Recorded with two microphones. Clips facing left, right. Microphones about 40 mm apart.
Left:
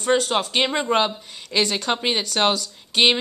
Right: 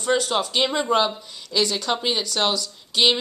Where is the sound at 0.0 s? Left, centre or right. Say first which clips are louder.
Left 1 dB; left.